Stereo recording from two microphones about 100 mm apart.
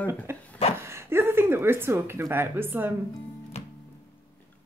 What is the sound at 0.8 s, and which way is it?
Speech, 25° right (ahead or behind).